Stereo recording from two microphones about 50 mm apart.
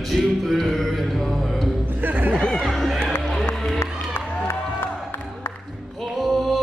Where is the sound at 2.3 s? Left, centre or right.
Centre.